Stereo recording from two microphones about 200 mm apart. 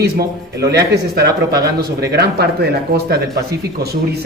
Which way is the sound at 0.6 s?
55° right (ahead or behind).